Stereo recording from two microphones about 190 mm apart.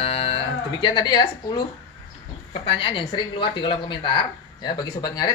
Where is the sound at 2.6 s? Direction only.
30° left (ahead or behind).